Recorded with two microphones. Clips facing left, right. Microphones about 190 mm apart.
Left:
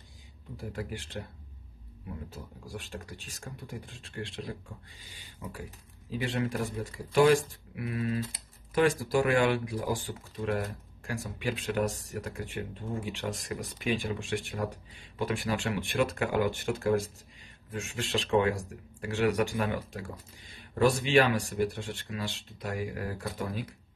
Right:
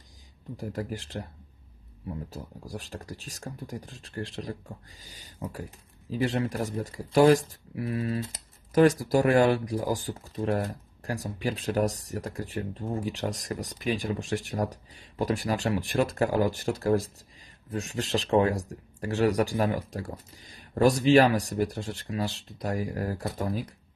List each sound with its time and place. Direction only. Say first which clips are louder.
0.6 s speech: right 4 dB; 40° right (ahead or behind)
2.3 s speech: right 3 dB; 40° right (ahead or behind)